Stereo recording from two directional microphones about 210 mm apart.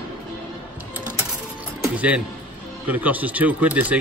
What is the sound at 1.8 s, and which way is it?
Music, 5° right (ahead or behind).